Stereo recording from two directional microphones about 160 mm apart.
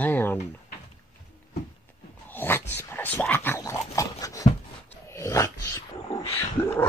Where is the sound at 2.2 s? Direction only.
15° left (ahead or behind).